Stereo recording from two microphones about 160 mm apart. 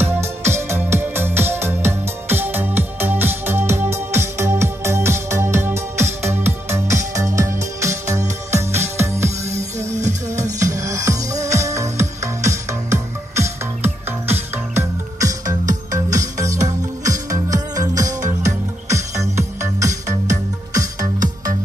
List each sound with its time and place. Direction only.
0.0 s music: 15° right (ahead or behind)
9.8 s music: 45° right (ahead or behind)
10.6 s music: 20° right (ahead or behind)
16.5 s music: 50° right (ahead or behind)
17.1 s music: 20° right (ahead or behind)